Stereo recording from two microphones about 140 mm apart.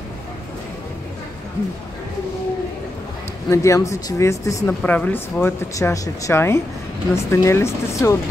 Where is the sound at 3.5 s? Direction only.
20° left (ahead or behind).